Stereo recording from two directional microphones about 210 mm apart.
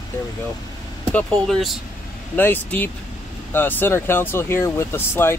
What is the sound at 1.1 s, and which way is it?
Speech, centre (ahead or behind).